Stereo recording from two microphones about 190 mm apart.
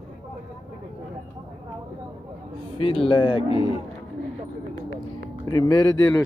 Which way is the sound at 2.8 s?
30° left (ahead or behind).